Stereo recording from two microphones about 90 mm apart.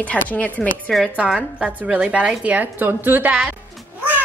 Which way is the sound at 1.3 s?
15° right (ahead or behind).